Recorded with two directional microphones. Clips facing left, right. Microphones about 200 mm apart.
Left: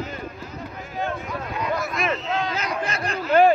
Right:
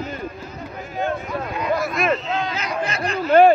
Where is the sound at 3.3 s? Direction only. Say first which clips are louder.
Right 4 dB; 50° right (ahead or behind).